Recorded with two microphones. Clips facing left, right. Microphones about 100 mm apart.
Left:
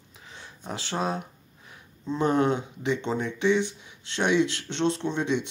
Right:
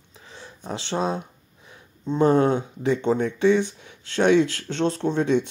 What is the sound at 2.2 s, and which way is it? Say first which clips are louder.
Speech: right 5 dB; 35° right (ahead or behind).